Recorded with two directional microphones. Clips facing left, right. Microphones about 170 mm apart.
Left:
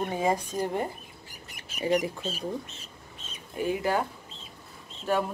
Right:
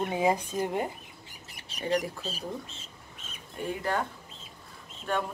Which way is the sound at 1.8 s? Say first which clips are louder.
Left 3 dB; 5° left (ahead or behind).